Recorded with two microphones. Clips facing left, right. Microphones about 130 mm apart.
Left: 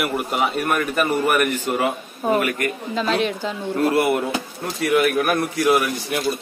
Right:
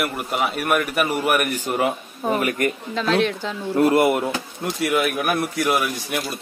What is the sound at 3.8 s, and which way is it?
Speech, 25° right (ahead or behind).